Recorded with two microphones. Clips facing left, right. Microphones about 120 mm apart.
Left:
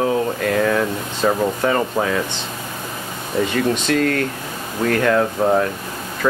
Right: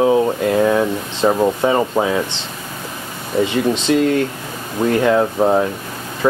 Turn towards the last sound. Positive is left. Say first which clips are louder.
# right 2 dB
turn(degrees=-15)  # may be behind; listen again after turning